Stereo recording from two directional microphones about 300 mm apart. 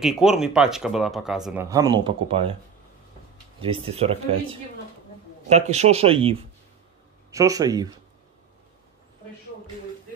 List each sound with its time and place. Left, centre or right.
0.0 s speech: centre
3.6 s speech: centre